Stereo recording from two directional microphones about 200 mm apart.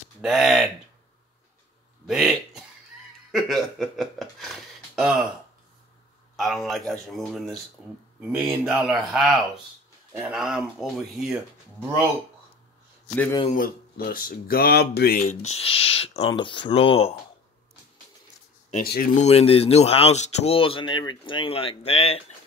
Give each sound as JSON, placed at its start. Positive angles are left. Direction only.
{"t": 0.2, "sound": "speech", "side_deg": 0}
{"t": 2.0, "sound": "a sound", "side_deg": 0}
{"t": 6.3, "sound": "a sound", "side_deg": 0}
{"t": 6.9, "sound": "speech", "side_deg": 0}
{"t": 13.1, "sound": "a man's voice", "side_deg": 10}
{"t": 13.6, "sound": "speech", "side_deg": 45}
{"t": 15.5, "sound": "speech", "side_deg": 30}
{"t": 18.9, "sound": "speech", "side_deg": 45}